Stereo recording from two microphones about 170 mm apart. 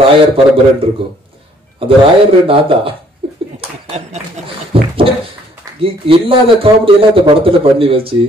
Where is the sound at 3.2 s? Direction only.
30° right (ahead or behind).